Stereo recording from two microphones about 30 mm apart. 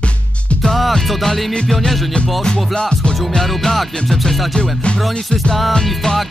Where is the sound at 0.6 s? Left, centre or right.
Centre.